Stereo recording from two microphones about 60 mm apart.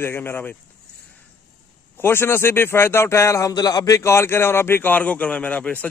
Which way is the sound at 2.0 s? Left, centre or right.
Left.